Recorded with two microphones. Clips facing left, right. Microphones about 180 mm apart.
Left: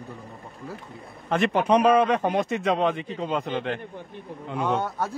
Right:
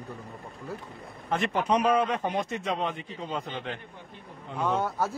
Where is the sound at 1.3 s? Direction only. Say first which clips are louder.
Left 5 dB; 65° left (ahead or behind).